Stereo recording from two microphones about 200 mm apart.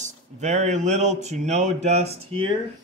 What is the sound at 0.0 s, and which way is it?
Speech, 35° right (ahead or behind).